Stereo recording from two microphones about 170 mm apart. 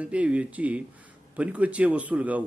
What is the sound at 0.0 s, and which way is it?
A man's voice, 5° right (ahead or behind).